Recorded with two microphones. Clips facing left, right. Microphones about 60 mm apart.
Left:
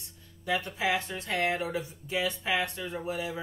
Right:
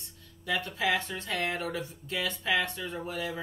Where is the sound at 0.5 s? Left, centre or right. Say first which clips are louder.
Even; centre.